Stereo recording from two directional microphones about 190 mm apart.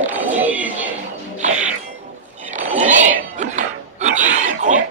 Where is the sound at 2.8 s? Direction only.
40° right (ahead or behind).